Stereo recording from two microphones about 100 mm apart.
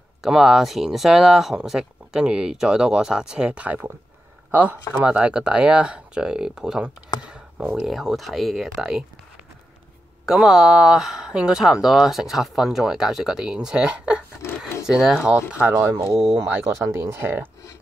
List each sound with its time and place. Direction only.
0.2 s speech: 5° right (ahead or behind)
10.2 s speech: 5° right (ahead or behind)
16.8 s speech: 30° right (ahead or behind)